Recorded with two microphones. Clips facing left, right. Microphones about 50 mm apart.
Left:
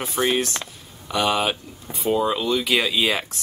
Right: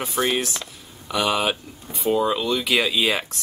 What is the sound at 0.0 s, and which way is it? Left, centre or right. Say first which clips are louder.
Speech: left 1 dB; centre.